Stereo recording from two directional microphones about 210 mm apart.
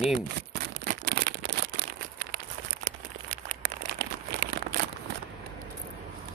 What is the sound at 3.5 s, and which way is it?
Crumpling, 50° right (ahead or behind).